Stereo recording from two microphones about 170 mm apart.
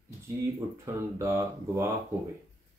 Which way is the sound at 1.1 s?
15° right (ahead or behind).